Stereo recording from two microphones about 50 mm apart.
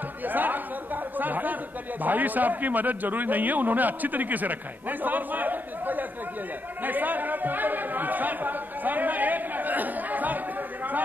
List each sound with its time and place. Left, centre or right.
0.2 s speech: right
6.8 s chatter: right